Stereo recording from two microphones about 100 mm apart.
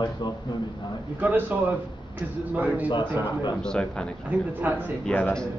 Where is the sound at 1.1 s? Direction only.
15° right (ahead or behind).